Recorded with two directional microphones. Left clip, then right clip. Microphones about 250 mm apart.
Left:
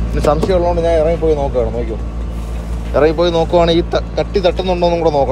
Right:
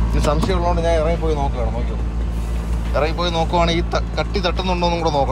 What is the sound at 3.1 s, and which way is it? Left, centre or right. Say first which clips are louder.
Speech: left 7 dB; centre.